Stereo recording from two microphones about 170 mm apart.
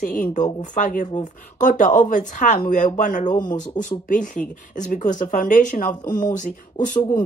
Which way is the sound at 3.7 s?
50° left (ahead or behind).